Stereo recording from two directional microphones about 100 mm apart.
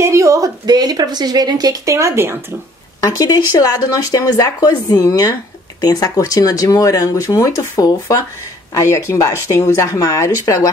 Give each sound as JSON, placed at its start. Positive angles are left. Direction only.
{"t": 0.0, "sound": "speech", "side_deg": -30}
{"t": 3.0, "sound": "speech", "side_deg": 40}